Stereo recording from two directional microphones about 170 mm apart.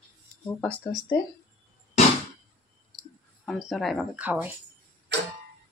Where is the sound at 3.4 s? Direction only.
Centre (ahead or behind).